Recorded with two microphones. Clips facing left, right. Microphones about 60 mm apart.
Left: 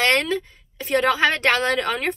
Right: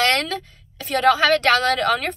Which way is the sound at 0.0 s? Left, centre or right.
Left.